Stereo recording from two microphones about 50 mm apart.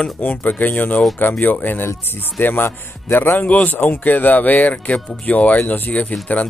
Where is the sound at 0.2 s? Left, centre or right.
Left.